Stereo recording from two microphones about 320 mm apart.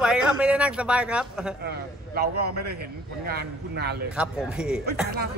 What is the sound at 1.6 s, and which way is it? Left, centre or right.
A man's voice, right.